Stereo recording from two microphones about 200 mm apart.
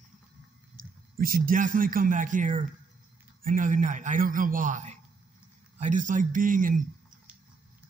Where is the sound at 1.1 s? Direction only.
45° right (ahead or behind).